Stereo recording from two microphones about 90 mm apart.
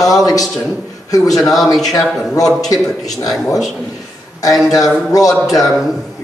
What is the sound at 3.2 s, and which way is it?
Speech, 35° left (ahead or behind).